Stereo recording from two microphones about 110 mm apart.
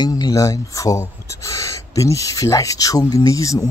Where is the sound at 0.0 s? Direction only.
35° left (ahead or behind).